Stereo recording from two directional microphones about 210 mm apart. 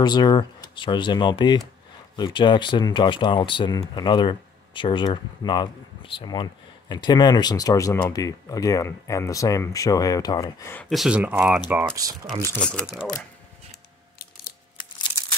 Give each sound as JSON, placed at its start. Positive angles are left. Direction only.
{"t": 0.0, "sound": "speech", "side_deg": 20}
{"t": 12.6, "sound": "speech", "side_deg": 0}